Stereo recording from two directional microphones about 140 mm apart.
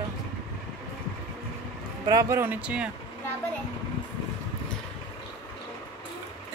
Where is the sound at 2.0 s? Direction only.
25° right (ahead or behind).